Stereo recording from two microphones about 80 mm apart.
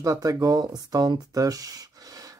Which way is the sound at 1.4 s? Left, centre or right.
Right.